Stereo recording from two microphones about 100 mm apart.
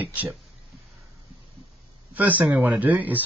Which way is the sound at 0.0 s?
15° right (ahead or behind).